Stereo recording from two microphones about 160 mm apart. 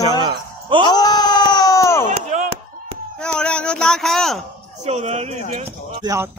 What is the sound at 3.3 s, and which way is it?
Speech, 5° left (ahead or behind).